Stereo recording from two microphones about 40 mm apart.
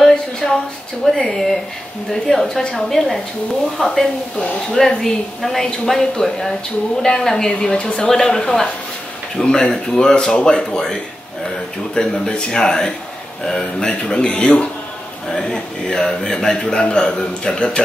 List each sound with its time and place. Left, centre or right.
0.4 s a sound: centre
1.0 s a man's voice: centre
8.1 s a man's voice: centre
11.9 s a man's voice: centre